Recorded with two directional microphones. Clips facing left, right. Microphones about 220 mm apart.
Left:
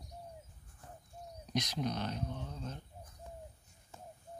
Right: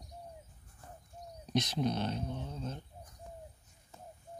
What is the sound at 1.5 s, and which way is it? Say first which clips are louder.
Speech: right 4 dB; 25° right (ahead or behind).